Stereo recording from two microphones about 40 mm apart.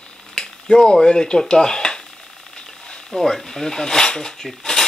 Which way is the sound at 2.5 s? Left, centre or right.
Centre.